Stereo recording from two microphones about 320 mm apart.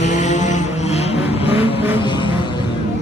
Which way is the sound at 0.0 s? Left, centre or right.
Left.